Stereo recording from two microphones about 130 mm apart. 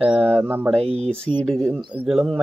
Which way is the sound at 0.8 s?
55° right (ahead or behind).